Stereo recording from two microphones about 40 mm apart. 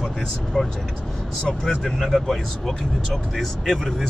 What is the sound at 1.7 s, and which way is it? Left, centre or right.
Speech, centre.